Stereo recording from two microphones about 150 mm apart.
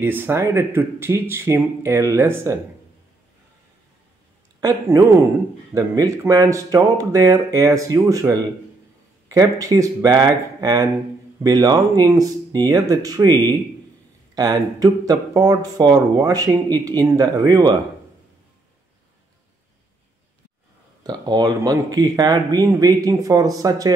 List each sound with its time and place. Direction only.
0.0 s speech: 15° right (ahead or behind)
4.6 s speech: 20° right (ahead or behind)
21.0 s speech: 25° right (ahead or behind)